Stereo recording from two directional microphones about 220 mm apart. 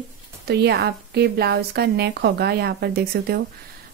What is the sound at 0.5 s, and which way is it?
A woman's voice, 50° right (ahead or behind).